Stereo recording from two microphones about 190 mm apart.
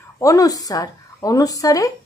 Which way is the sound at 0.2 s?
20° left (ahead or behind).